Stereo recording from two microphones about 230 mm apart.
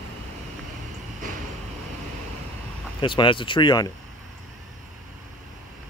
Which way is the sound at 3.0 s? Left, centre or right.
Left.